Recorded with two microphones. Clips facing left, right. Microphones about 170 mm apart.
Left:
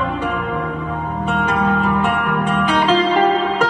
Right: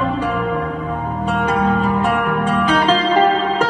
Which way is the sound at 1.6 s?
35° right (ahead or behind).